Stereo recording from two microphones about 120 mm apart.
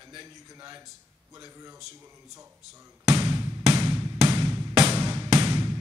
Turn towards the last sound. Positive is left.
turn(degrees=-35)  # may be behind; listen again after turning